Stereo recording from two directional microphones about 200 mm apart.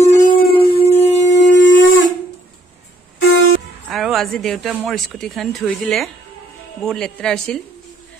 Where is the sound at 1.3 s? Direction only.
60° left (ahead or behind).